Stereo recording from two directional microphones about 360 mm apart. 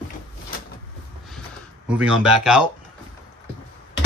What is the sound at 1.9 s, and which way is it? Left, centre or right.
Speech, centre.